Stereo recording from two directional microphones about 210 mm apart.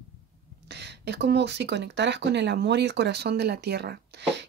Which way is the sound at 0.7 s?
55° right (ahead or behind).